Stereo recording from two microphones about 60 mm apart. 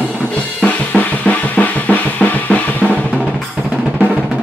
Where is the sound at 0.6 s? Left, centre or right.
Left.